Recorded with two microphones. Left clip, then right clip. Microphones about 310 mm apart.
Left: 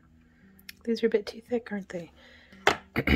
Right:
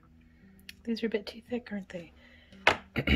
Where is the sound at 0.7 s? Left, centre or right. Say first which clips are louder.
Left 7 dB; centre.